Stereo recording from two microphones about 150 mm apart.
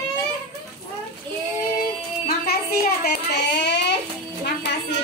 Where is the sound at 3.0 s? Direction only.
90° left.